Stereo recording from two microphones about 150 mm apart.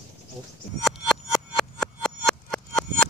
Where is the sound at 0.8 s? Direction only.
Centre (ahead or behind).